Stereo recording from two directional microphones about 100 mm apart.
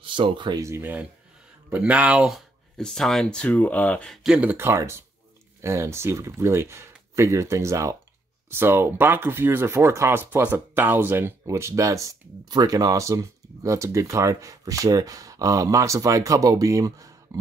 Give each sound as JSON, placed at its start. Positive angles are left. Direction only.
{"t": 0.0, "sound": "speech", "side_deg": -55}
{"t": 0.6, "sound": "speech", "side_deg": -30}
{"t": 1.7, "sound": "speech", "side_deg": -15}
{"t": 2.8, "sound": "speech", "side_deg": 5}
{"t": 4.2, "sound": "speech", "side_deg": -10}
{"t": 4.6, "sound": "speech", "side_deg": -25}